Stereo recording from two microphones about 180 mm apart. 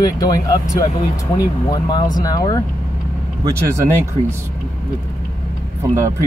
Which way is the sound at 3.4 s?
15° right (ahead or behind).